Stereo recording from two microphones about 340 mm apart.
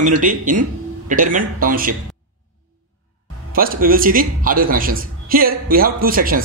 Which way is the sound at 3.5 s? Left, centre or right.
Right.